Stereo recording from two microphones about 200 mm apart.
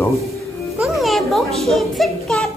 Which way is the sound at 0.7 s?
Centre (ahead or behind).